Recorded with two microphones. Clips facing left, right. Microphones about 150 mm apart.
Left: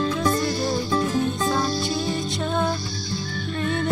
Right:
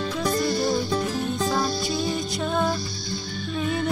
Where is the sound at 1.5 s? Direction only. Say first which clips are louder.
Left 1 dB; centre (ahead or behind).